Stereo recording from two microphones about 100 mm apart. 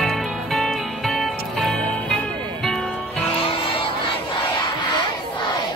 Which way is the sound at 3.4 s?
65° left (ahead or behind).